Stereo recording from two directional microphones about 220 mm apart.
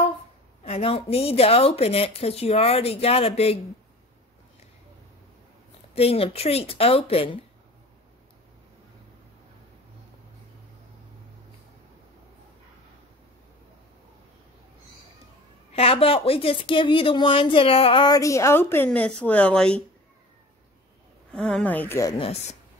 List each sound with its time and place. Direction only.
0.7 s speech: 25° left (ahead or behind)
5.9 s speech: 25° left (ahead or behind)
15.7 s speech: 25° left (ahead or behind); by 19.8 s 5° left (ahead or behind)
21.3 s speech: 5° left (ahead or behind)
22.2 s speech: 30° left (ahead or behind)